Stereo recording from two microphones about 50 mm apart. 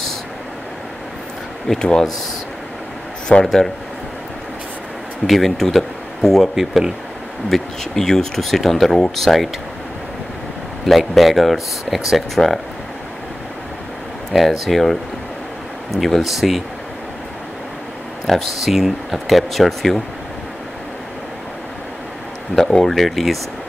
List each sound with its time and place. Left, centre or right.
1.7 s speech: centre
3.4 s speech: centre
5.2 s speech: centre
7.4 s speech: centre
10.9 s speech: centre
14.3 s speech: centre
18.2 s speech: centre
22.6 s speech: centre